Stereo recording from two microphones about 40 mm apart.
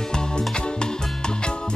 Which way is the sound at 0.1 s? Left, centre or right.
Centre.